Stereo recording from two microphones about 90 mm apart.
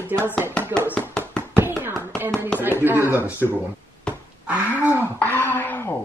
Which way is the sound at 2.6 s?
20° right (ahead or behind).